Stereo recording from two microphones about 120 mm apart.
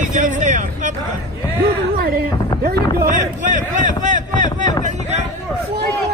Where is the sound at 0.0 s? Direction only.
90° right.